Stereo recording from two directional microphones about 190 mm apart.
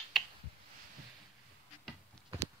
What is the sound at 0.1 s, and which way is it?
Finger snapping, centre (ahead or behind).